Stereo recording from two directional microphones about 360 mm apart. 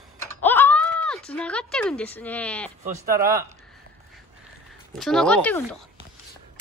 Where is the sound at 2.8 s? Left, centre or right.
Right.